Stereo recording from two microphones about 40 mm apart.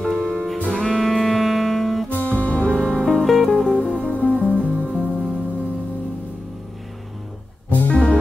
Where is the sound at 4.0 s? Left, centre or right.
Left.